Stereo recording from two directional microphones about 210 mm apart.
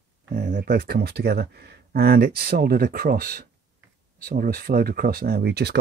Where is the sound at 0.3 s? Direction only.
40° right (ahead or behind).